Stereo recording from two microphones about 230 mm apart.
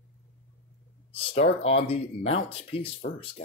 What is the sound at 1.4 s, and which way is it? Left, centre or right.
Speech, left.